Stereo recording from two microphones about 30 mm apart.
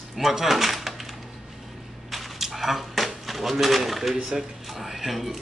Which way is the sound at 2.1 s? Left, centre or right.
Centre.